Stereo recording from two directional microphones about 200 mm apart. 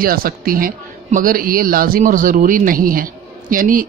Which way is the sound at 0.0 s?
45° right (ahead or behind).